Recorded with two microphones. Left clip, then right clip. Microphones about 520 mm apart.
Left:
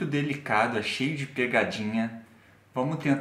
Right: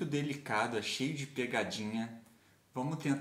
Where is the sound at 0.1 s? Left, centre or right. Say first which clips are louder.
Left 10 dB; right.